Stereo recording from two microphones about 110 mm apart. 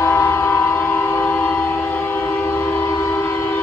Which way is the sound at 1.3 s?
15° left (ahead or behind).